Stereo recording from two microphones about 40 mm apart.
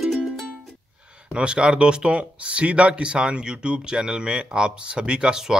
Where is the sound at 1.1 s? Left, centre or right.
Right.